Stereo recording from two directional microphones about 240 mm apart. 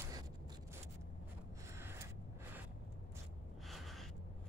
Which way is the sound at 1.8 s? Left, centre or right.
Centre.